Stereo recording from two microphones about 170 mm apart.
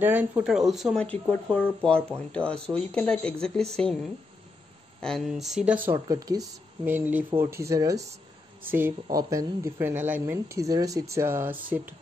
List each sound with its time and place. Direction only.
0.0 s speech: 10° right (ahead or behind)
5.0 s speech: centre (ahead or behind)
5.9 s speech: 20° right (ahead or behind)